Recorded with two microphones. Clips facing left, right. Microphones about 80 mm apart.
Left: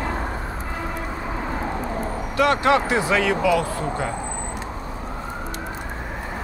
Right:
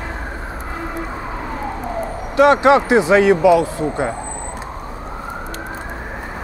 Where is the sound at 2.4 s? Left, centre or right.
Right.